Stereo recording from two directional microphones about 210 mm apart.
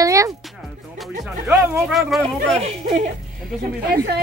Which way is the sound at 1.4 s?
10° right (ahead or behind).